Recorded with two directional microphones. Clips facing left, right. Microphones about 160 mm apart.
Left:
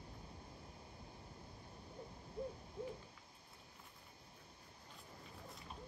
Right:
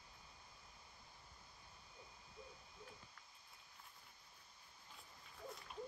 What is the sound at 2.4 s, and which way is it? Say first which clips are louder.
Hoot: left 14 dB; 60° left (ahead or behind).